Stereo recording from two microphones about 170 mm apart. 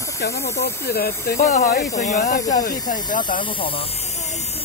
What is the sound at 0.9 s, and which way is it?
Speech, 70° left (ahead or behind).